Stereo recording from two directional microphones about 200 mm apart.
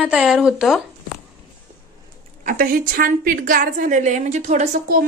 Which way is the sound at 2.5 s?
45° right (ahead or behind).